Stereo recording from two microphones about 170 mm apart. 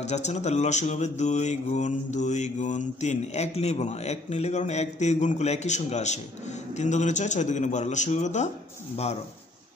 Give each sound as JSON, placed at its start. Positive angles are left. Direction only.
{"t": 0.0, "sound": "speech", "side_deg": 40}